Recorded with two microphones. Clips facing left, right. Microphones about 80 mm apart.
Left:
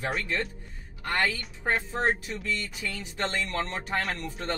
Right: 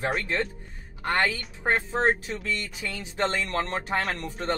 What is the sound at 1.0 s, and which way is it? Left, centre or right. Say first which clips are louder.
A woman's voice: right 3 dB; right.